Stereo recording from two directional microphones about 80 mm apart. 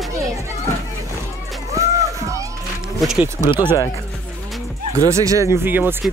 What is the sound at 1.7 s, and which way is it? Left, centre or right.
Rowboat, right.